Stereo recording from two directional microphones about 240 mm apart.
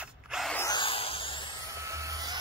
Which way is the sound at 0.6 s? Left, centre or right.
Centre.